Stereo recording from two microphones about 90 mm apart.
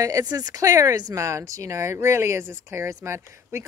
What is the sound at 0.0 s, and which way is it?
A woman's voice, 40° right (ahead or behind).